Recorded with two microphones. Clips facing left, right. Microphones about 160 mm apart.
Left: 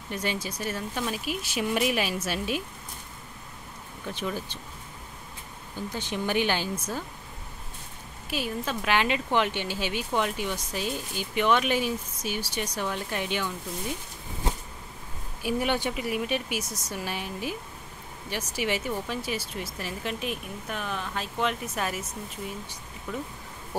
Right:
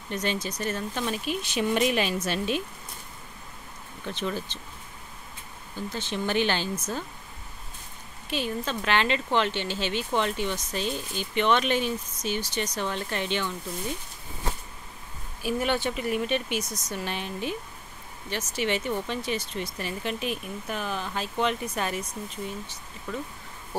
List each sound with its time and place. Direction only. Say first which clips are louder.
0.1 s speech: right 2 dB; 10° left (ahead or behind)
4.0 s speech: right 1 dB; 10° left (ahead or behind)
5.8 s speech: even; 15° left (ahead or behind)
8.3 s speech: right 1 dB; 5° left (ahead or behind)
15.4 s speech: even; 15° left (ahead or behind)